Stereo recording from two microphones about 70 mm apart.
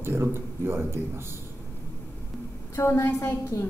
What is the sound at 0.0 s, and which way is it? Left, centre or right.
Speech, right.